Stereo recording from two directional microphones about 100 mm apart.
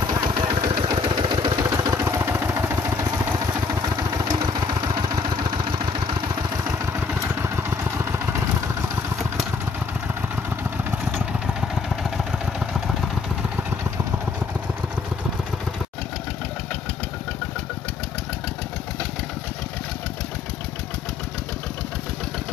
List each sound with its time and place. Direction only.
0.1 s vehicle: 45° right (ahead or behind); by 1.4 s 65° right (ahead or behind)
1.4 s vehicle: 35° right (ahead or behind)
4.8 s vehicle: 40° right (ahead or behind)
6.9 s vehicle: 25° right (ahead or behind)
12.3 s vehicle: 5° right (ahead or behind)